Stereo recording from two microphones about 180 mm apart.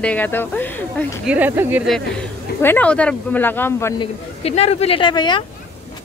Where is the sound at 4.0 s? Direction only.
35° left (ahead or behind).